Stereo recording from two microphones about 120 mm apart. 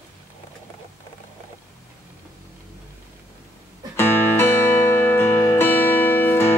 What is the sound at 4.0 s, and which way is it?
Music, 20° left (ahead or behind).